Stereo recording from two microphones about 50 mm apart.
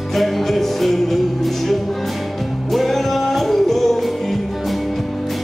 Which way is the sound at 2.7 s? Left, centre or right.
Centre.